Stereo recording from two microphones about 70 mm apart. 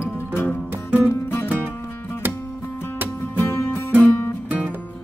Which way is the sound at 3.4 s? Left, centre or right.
Left.